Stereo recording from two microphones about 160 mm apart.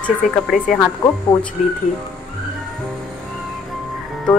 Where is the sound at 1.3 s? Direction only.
20° left (ahead or behind).